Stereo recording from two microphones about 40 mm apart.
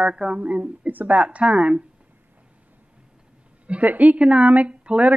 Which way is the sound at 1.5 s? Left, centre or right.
Right.